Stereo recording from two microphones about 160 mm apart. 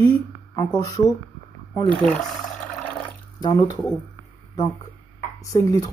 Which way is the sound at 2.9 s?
30° left (ahead or behind).